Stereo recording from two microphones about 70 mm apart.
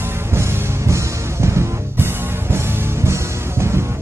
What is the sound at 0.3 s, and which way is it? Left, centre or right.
Music, right.